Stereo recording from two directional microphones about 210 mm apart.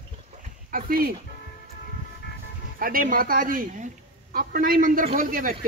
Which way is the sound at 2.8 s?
40° right (ahead or behind).